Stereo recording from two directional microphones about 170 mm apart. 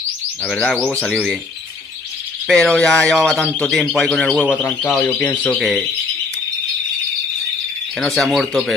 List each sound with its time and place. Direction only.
0.5 s speech: 5° left (ahead or behind)
2.4 s speech: 5° left (ahead or behind)
8.0 s speech: centre (ahead or behind)